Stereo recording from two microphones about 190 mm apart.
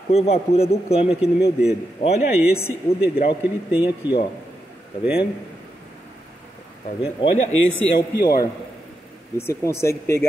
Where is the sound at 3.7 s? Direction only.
5° right (ahead or behind).